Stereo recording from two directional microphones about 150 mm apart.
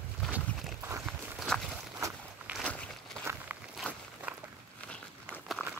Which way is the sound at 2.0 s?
20° right (ahead or behind).